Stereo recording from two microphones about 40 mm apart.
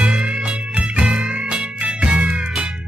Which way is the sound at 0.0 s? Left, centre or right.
Right.